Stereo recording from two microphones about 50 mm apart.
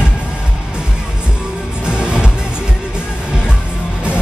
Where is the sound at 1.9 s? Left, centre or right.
Centre.